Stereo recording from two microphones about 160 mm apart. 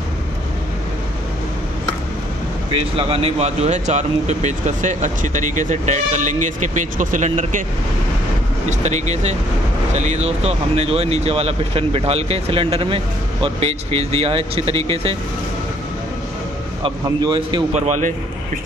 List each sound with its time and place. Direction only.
2.7 s speech: 35° right (ahead or behind)
8.6 s speech: 45° right (ahead or behind)
16.8 s a man's voice: 30° right (ahead or behind)
17.7 s speech: 45° right (ahead or behind)